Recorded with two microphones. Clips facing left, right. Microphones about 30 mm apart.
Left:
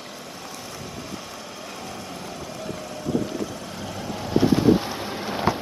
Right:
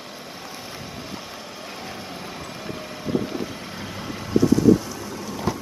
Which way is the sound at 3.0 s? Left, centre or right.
Right.